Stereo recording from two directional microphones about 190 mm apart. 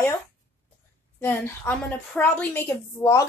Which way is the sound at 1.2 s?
10° left (ahead or behind).